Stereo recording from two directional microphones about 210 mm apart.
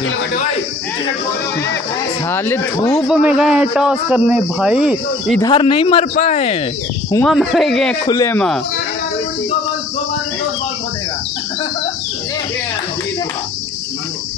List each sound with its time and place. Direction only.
2.3 s speech: 10° left (ahead or behind)
3.1 s a man's voice: 5° right (ahead or behind)
5.4 s speech: 25° left (ahead or behind)
7.2 s a man's voice: centre (ahead or behind)
8.0 s speech: 15° left (ahead or behind)